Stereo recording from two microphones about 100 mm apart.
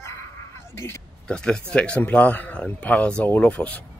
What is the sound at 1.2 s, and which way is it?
A man's voice, 10° left (ahead or behind).